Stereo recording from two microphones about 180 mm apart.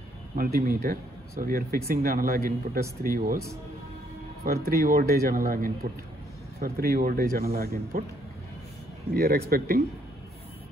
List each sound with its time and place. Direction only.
0.4 s speech: 55° right (ahead or behind)
4.5 s speech: 60° right (ahead or behind)
9.1 s speech: 55° right (ahead or behind)